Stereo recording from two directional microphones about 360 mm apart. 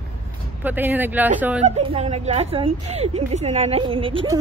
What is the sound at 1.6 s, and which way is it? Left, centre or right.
Speech, centre.